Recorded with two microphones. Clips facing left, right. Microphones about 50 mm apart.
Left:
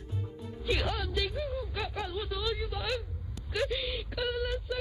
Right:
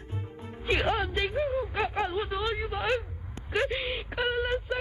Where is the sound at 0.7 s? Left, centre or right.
Right.